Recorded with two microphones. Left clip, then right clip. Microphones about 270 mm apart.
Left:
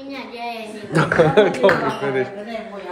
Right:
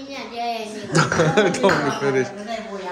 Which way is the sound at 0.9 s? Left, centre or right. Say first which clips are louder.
Left 3 dB; centre.